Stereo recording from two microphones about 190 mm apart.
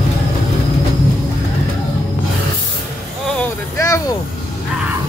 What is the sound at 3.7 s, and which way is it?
Vehicle, 15° left (ahead or behind).